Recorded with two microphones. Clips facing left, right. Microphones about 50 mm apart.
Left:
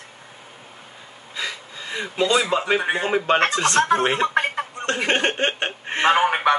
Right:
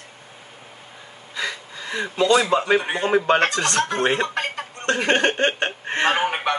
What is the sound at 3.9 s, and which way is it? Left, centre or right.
Speech, centre.